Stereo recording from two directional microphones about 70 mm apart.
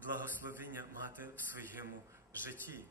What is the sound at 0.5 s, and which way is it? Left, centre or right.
A man's voice, right.